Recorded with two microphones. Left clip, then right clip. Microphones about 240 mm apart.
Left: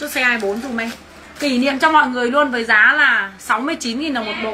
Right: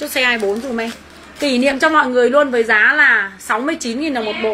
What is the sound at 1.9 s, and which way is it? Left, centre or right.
Speech, centre.